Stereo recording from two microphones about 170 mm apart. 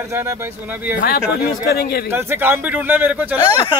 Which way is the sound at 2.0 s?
15° right (ahead or behind).